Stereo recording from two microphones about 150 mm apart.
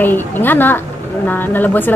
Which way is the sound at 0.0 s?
15° left (ahead or behind).